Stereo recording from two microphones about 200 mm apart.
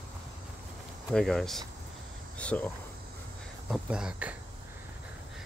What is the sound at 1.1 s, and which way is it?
Speech, centre (ahead or behind).